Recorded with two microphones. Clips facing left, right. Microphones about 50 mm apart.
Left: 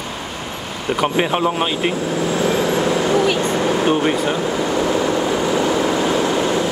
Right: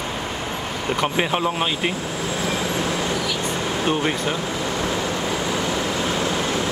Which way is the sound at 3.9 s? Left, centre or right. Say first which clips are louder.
Left 5 dB; centre.